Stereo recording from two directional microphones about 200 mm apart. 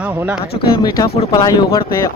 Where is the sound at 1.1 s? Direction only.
25° left (ahead or behind).